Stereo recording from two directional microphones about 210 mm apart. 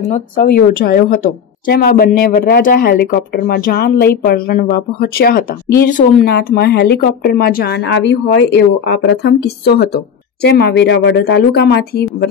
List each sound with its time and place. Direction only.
0.1 s speech: 40° left (ahead or behind)